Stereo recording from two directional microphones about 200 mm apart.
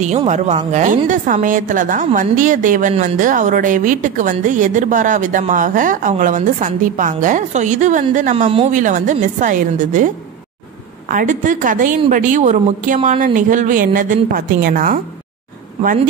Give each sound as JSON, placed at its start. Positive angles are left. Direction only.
{"t": 0.0, "sound": "a woman's voice", "side_deg": -35}